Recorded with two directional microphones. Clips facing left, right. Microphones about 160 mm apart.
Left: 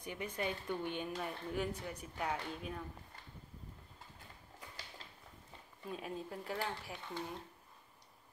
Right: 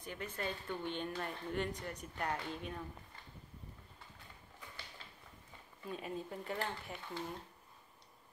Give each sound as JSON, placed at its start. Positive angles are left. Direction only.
{"t": 0.0, "sound": "a woman's voice", "side_deg": 15}
{"t": 5.9, "sound": "a woman's voice", "side_deg": 0}